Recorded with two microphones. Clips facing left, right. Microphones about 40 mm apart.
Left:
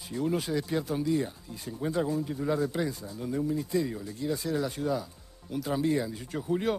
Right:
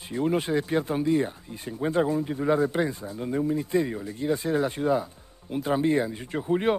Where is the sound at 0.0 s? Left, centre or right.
Right.